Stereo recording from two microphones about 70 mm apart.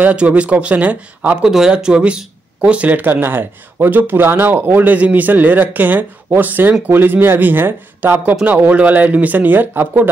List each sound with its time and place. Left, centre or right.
0.0 s speech: centre
1.4 s speech: centre; by 10.0 s right